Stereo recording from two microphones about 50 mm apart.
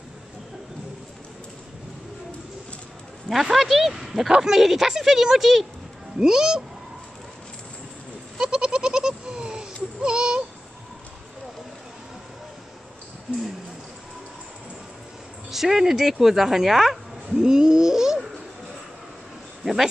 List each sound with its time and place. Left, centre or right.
3.3 s speech: centre
8.4 s goat: centre
10.0 s a sound: centre
15.5 s speech: centre
17.4 s a sound: centre
19.6 s speech: centre